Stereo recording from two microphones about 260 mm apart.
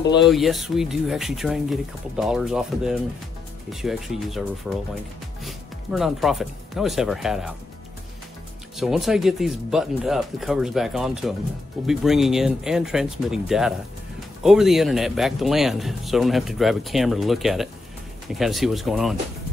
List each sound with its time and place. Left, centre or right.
0.2 s speech: centre
8.7 s speech: centre